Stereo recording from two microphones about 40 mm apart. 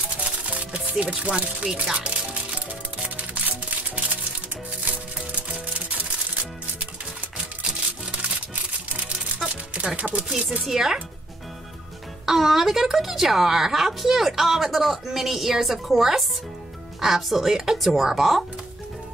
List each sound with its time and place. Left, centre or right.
0.5 s music: right
1.3 s music: right
2.0 s music: right
5.5 s music: right
6.8 s music: right
9.9 s chopping: right
10.7 s a woman's voice: centre
12.3 s a woman's voice: centre